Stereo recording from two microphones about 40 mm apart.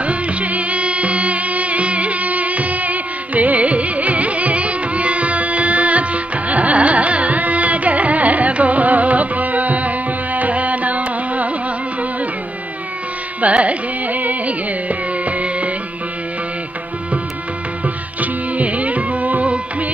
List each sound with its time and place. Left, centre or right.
0.0 s music: right
13.4 s carnatic music: right
17.8 s music: right